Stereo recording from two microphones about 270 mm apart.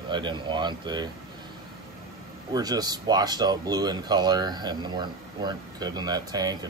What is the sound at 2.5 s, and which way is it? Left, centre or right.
Speech, centre.